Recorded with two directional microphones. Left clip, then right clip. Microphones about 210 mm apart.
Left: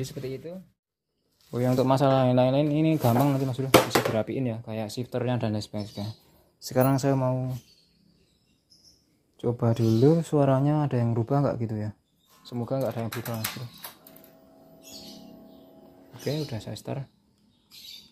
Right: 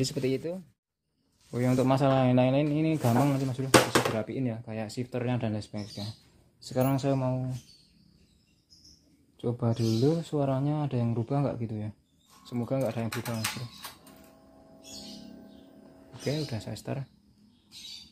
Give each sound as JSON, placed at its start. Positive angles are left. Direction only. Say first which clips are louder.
{"t": 0.0, "sound": "speech", "louder": "right 5 dB", "side_deg": -30}
{"t": 1.5, "sound": "speech", "louder": "left 3 dB", "side_deg": 10}
{"t": 9.4, "sound": "speech", "louder": "left 4 dB", "side_deg": 20}
{"t": 12.4, "sound": "speech", "louder": "left 2 dB", "side_deg": 5}
{"t": 16.3, "sound": "speech", "louder": "left 2 dB", "side_deg": 10}